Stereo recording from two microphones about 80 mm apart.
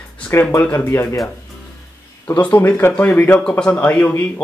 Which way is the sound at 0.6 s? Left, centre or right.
Left.